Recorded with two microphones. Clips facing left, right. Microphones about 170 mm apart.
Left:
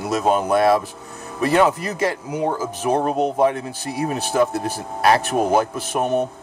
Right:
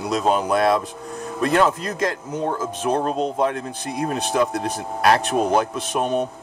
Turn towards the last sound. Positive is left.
turn(degrees=5)  # may be behind; listen again after turning